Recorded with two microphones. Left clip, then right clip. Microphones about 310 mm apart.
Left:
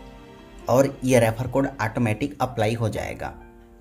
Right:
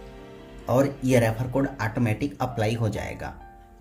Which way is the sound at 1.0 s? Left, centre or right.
Left.